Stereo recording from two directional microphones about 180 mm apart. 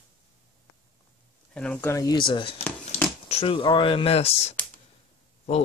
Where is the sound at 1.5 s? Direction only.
5° left (ahead or behind).